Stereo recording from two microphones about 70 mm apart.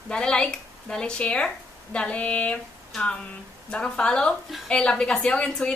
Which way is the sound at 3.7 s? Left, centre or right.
Centre.